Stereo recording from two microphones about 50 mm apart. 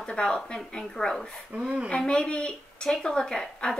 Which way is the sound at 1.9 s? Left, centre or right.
Centre.